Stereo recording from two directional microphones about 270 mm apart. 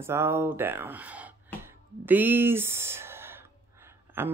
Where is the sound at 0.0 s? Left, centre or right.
Centre.